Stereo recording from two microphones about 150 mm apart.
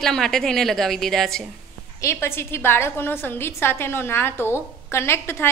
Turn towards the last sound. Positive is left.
turn(degrees=15)  # may be behind; listen again after turning